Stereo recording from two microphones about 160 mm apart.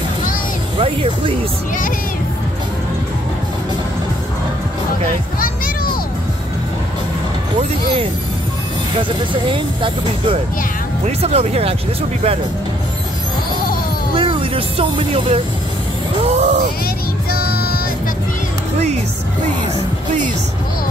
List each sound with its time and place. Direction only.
0.7 s speech: 35° right (ahead or behind)
9.3 s speech: 30° right (ahead or behind)
14.1 s speech: 35° right (ahead or behind)
16.3 s music: 45° right (ahead or behind)
17.3 s music: 70° left (ahead or behind)